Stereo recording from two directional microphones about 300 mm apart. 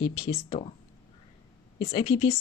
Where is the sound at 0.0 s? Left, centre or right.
Centre.